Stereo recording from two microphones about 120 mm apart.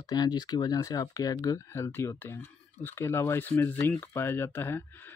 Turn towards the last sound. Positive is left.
turn(degrees=15)  # may be behind; listen again after turning